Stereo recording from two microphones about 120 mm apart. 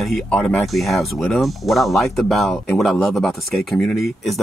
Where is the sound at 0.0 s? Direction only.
Centre (ahead or behind).